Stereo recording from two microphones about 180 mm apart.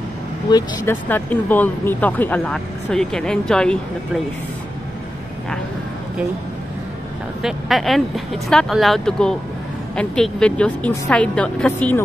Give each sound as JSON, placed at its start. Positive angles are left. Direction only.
{"t": 0.5, "sound": "speech", "side_deg": 20}
{"t": 1.0, "sound": "speech", "side_deg": 10}
{"t": 7.4, "sound": "a woman's voice", "side_deg": 0}